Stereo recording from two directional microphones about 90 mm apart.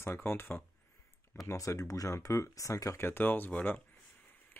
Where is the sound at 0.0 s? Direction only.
25° left (ahead or behind).